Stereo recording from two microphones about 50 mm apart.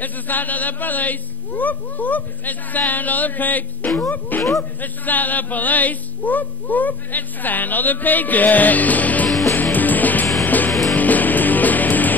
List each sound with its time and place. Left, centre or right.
0.0 s speech: left
9.5 s music: left
10.7 s music: centre
11.0 s music: left